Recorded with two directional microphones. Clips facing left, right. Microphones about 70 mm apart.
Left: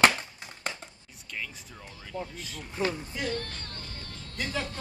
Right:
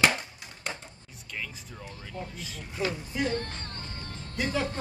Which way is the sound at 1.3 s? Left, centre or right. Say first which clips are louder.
Right 1 dB; centre.